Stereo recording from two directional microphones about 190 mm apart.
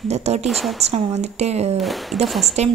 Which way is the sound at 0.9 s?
35° right (ahead or behind).